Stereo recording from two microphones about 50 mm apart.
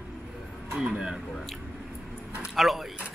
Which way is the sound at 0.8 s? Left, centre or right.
Centre.